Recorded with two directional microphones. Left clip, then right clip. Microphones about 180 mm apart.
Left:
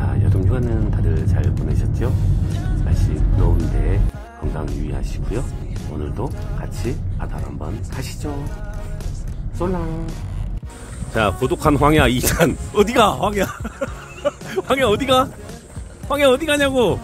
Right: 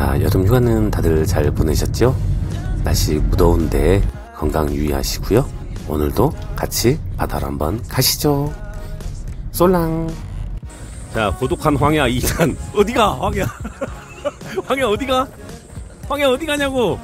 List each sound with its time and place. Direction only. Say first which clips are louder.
0.0 s speech: right 8 dB; 20° right (ahead or behind)
9.6 s speech: right 10 dB; 25° right (ahead or behind)
11.1 s speech: even; centre (ahead or behind)